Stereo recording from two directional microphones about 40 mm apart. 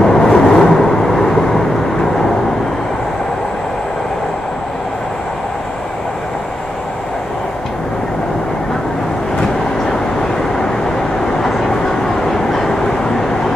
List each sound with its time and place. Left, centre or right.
0.0 s vehicle: centre
11.4 s train: centre